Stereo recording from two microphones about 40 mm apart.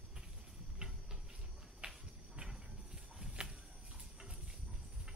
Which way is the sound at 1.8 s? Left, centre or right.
Right.